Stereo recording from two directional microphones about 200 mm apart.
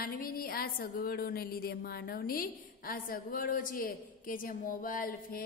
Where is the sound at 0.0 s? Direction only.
45° left (ahead or behind).